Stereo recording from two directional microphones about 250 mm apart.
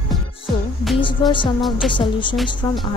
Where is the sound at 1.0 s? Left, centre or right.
Centre.